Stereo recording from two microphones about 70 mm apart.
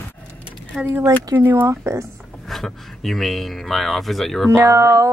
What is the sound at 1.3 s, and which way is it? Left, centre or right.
Speech, right.